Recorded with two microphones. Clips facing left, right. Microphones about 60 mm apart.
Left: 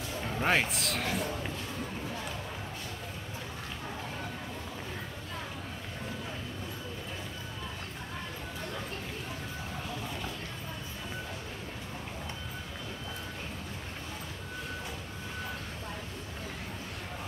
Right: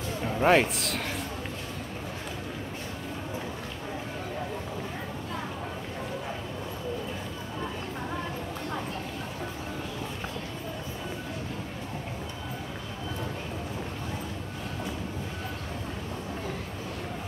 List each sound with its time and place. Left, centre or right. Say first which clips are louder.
0.2 s a man's voice: right 7 dB; centre